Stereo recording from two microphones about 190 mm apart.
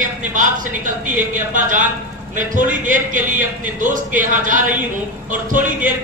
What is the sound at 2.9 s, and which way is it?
Speech, 45° right (ahead or behind).